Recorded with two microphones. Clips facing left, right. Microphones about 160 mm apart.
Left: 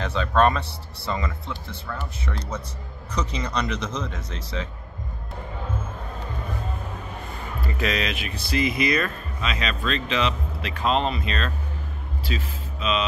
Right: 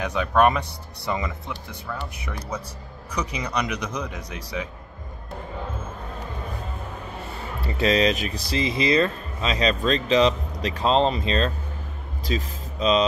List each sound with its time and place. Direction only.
0.0 s speech: 15° right (ahead or behind)
7.6 s speech: 30° right (ahead or behind)